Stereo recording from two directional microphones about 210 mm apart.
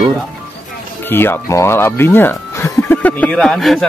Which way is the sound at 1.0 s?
10° left (ahead or behind).